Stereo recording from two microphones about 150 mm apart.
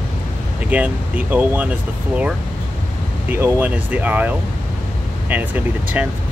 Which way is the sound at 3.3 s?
15° right (ahead or behind).